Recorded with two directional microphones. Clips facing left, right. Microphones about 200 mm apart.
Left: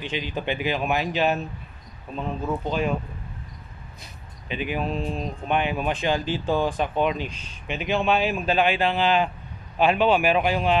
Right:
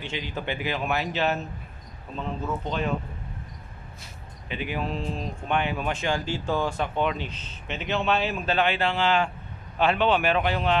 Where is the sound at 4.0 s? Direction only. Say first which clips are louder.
Even; 20° left (ahead or behind).